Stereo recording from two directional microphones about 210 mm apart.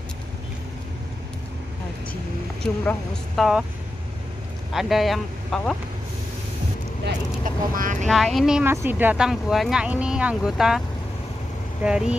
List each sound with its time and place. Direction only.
2.6 s speech: 5° left (ahead or behind)
4.7 s speech: centre (ahead or behind)
7.4 s speech: 40° right (ahead or behind)
8.1 s speech: centre (ahead or behind)
11.8 s speech: 5° right (ahead or behind)